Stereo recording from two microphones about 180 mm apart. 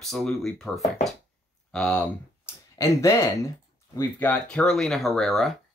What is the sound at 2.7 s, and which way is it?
Speech, 15° left (ahead or behind).